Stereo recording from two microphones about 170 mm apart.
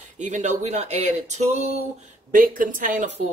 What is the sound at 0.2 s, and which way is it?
Speech, 45° right (ahead or behind).